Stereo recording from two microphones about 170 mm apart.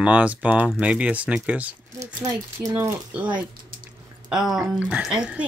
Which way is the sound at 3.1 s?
10° right (ahead or behind).